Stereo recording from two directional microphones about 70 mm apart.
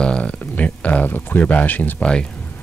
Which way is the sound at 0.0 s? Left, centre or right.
Centre.